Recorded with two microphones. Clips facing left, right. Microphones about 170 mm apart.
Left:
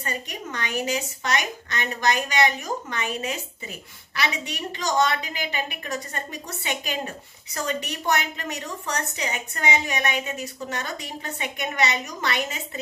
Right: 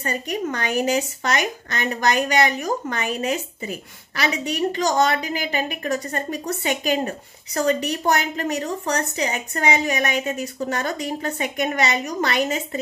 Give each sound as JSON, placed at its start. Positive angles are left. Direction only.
{"t": 0.0, "sound": "a woman's voice", "side_deg": -45}